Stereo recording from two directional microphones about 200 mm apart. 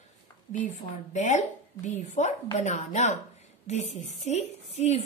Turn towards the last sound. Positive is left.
turn(degrees=30)  # may be behind; listen again after turning